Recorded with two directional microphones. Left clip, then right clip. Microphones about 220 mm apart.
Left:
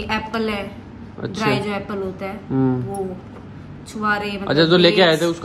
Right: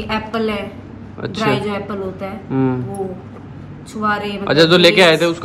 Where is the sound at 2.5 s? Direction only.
15° left (ahead or behind).